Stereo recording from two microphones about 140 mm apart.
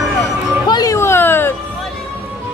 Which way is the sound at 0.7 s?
25° left (ahead or behind).